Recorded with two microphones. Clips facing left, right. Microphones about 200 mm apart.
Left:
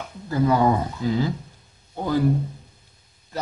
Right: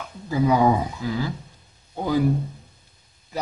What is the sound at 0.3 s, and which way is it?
Speech, 10° right (ahead or behind).